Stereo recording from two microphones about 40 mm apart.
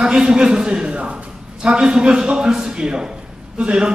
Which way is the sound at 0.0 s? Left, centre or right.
Centre.